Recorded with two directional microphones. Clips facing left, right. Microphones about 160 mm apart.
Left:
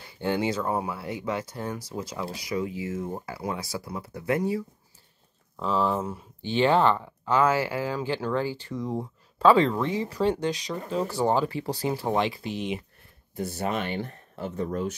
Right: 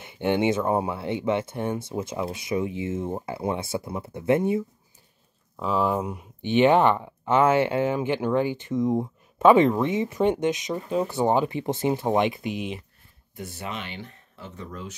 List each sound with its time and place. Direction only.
0.0 s speech: 20° right (ahead or behind)
5.6 s speech: 10° right (ahead or behind)
13.4 s speech: 40° left (ahead or behind)